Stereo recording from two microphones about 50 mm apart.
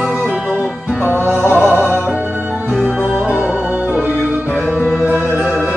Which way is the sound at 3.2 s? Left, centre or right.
Right.